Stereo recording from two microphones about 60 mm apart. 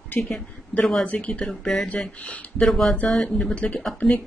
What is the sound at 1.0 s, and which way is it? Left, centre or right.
Speech, left.